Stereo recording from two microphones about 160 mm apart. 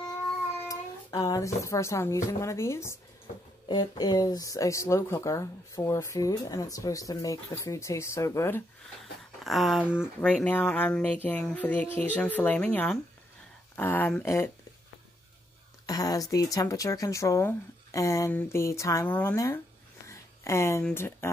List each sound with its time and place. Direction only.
0.7 s speech: 20° left (ahead or behind)
9.4 s speech: centre (ahead or behind)
10.2 s speech: 5° left (ahead or behind)
15.9 s speech: 25° left (ahead or behind)
20.1 s a sound: 15° left (ahead or behind)
20.8 s speech: 15° left (ahead or behind)